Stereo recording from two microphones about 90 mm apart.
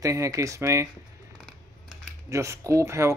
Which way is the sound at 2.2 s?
35° right (ahead or behind).